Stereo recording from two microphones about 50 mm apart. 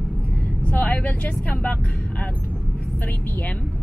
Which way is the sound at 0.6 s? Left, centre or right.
Left.